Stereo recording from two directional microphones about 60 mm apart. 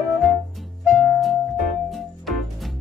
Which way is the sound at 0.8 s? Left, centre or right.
Centre.